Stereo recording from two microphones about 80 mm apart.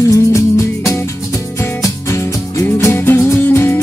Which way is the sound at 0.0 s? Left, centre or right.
Left.